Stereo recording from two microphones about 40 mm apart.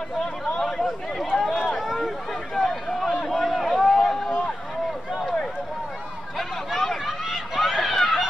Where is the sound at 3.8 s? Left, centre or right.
Centre.